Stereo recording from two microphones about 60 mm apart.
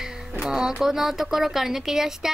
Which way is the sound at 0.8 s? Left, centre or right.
Centre.